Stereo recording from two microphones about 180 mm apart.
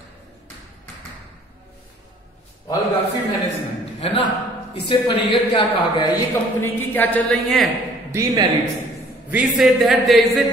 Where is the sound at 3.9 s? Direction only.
30° left (ahead or behind).